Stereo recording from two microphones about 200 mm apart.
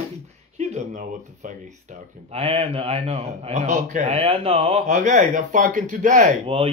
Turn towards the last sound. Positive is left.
turn(degrees=-30)  # may be behind; listen again after turning